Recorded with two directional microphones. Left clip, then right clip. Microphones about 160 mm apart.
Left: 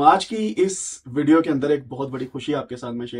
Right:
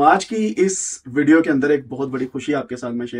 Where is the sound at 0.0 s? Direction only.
5° right (ahead or behind).